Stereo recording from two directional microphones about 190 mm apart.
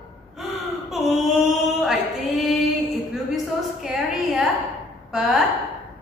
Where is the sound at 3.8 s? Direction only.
Centre (ahead or behind).